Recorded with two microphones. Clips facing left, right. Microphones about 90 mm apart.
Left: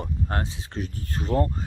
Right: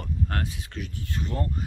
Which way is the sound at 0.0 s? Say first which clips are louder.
Left 2 dB; 25° left (ahead or behind).